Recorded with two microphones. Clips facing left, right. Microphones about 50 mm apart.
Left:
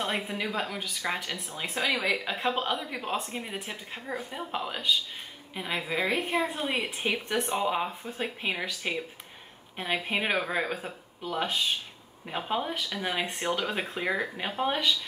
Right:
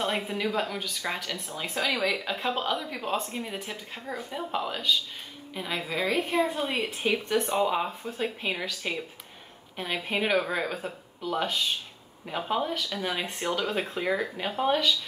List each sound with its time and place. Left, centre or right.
0.3 s speech: centre
6.6 s speech: centre
7.1 s speech: centre